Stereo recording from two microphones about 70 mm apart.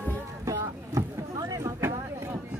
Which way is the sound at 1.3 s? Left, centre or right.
Right.